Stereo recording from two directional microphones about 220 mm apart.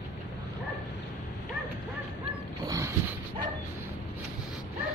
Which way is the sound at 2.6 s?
15° right (ahead or behind).